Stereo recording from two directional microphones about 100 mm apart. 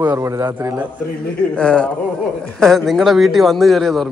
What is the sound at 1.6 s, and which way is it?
A man's voice, 10° left (ahead or behind).